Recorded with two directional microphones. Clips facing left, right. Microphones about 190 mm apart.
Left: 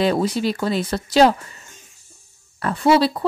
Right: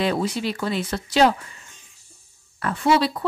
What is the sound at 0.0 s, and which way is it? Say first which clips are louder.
Speech: left 4 dB; 40° left (ahead or behind).